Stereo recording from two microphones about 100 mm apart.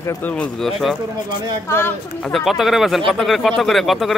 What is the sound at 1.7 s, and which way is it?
Speech, 25° left (ahead or behind).